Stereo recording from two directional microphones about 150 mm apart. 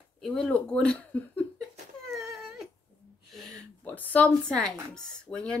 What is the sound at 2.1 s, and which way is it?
Whimper, centre (ahead or behind).